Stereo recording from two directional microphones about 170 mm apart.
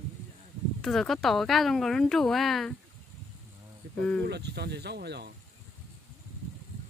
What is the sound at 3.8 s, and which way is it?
Insect, 75° right (ahead or behind).